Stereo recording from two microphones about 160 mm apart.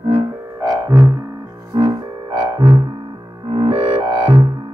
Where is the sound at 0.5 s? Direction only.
25° right (ahead or behind).